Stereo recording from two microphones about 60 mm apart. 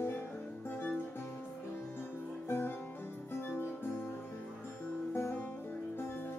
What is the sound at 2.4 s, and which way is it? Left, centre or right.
Music, left.